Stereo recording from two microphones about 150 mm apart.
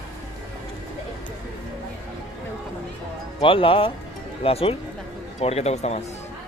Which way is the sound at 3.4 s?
35° left (ahead or behind).